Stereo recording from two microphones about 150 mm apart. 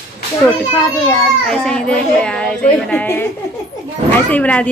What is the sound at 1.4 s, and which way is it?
A child's voice, 5° left (ahead or behind).